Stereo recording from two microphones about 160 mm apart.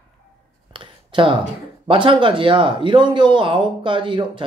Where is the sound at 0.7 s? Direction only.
30° right (ahead or behind).